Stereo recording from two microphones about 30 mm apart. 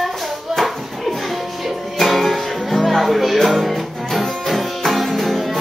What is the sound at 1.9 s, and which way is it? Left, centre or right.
Music, centre.